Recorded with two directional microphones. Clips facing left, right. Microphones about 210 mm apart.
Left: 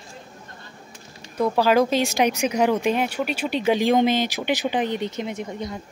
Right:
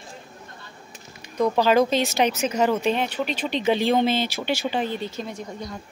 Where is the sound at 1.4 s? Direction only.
10° left (ahead or behind).